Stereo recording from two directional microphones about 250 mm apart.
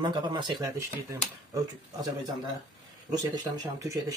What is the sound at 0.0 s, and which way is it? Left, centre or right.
A man's voice, centre.